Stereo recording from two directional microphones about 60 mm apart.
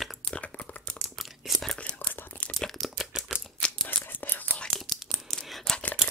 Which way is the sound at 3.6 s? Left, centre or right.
Centre.